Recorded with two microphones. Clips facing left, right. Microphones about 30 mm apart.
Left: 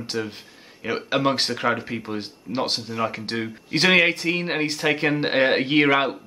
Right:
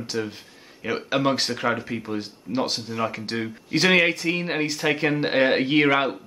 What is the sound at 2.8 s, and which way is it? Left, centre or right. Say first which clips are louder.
Speech: left 1 dB; centre.